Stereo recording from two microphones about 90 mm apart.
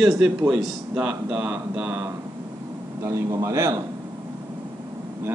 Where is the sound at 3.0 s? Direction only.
30° right (ahead or behind).